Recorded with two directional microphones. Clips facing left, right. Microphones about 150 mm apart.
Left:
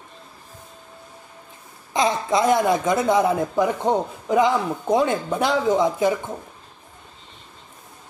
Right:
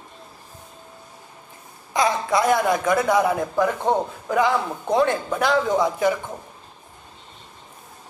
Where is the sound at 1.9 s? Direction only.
20° left (ahead or behind).